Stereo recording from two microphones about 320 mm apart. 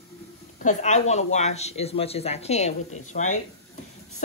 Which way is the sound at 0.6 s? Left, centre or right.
Left.